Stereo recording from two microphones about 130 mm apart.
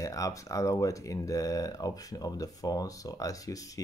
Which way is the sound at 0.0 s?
25° left (ahead or behind).